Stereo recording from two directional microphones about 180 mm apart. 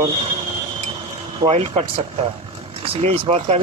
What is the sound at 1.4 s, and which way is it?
Speech, 35° right (ahead or behind).